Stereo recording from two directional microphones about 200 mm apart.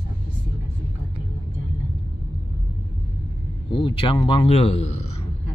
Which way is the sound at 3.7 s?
25° left (ahead or behind).